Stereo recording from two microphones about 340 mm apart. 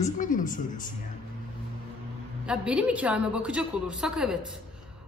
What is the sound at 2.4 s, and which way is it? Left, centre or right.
A woman's voice, centre.